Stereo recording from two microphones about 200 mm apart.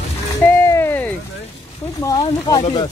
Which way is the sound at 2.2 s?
25° left (ahead or behind).